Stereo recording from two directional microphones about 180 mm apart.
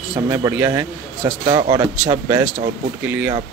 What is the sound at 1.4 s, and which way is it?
Speech, 25° right (ahead or behind).